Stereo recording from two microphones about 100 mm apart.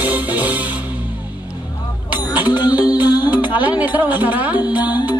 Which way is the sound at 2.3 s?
15° right (ahead or behind).